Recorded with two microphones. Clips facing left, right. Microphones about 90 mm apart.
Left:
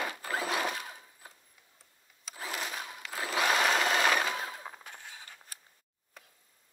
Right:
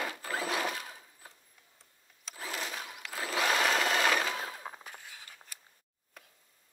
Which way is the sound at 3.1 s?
25° left (ahead or behind).